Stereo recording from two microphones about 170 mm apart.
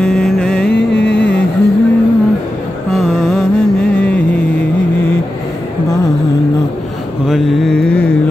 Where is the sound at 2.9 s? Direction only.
Centre (ahead or behind).